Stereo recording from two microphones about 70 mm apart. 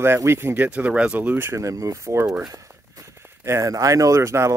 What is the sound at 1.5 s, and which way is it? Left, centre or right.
Speech, right.